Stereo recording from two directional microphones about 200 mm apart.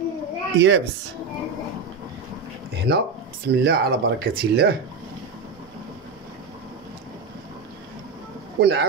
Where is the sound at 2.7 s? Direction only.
55° right (ahead or behind).